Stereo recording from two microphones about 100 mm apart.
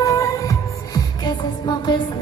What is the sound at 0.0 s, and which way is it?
Music, 35° left (ahead or behind).